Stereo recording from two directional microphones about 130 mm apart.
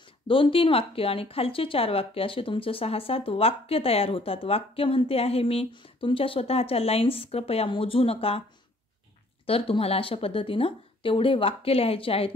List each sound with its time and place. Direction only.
0.3 s speech: 45° left (ahead or behind)
9.5 s speech: 45° left (ahead or behind)